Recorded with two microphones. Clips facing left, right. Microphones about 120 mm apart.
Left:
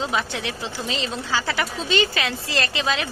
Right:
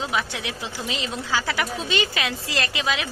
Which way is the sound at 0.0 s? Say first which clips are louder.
Left 2 dB; 5° right (ahead or behind).